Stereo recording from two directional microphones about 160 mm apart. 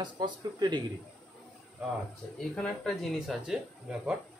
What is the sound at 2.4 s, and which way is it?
Speech, 5° left (ahead or behind).